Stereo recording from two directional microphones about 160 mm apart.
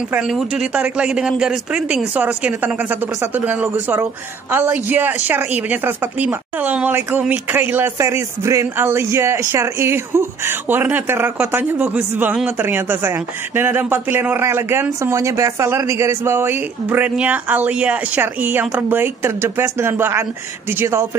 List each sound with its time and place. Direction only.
0.1 s speech: 5° right (ahead or behind)